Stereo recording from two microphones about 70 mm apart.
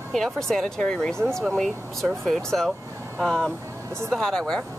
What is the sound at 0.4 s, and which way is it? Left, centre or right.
Speech, centre.